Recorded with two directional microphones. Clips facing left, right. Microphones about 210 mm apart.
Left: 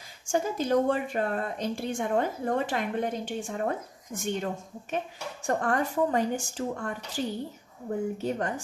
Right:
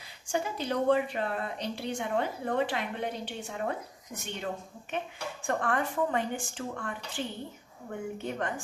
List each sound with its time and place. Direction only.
0.3 s a woman's voice: 45° left (ahead or behind)